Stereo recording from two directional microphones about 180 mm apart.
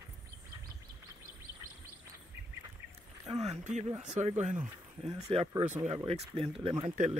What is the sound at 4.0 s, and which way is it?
Speech, 40° right (ahead or behind).